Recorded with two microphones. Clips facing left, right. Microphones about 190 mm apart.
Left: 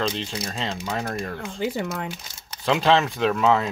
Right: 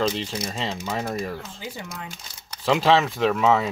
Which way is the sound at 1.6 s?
60° left (ahead or behind).